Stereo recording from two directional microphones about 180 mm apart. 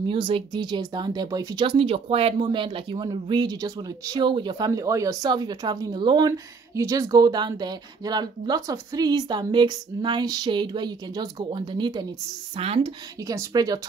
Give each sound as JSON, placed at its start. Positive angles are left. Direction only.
{"t": 0.0, "sound": "speech", "side_deg": -30}
{"t": 13.3, "sound": "speech", "side_deg": -20}